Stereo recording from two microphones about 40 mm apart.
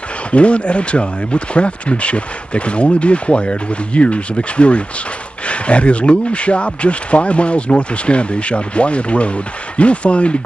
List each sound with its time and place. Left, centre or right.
0.3 s speech: left